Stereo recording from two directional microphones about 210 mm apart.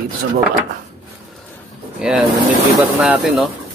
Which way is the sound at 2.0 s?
5° right (ahead or behind).